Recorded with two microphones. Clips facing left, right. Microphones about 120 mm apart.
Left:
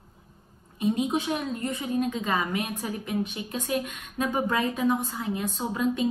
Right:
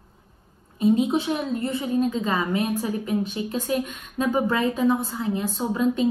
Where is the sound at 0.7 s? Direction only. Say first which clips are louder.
Right 5 dB; 35° right (ahead or behind).